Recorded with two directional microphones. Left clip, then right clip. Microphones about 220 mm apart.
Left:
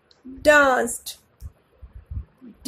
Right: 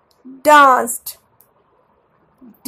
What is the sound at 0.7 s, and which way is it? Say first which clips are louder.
Speech: right 7 dB; 10° right (ahead or behind).